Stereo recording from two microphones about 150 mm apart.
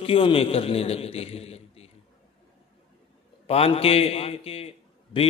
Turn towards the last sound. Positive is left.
turn(degrees=40)  # may be behind; listen again after turning